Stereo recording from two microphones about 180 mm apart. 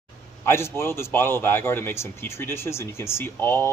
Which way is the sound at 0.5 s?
15° left (ahead or behind).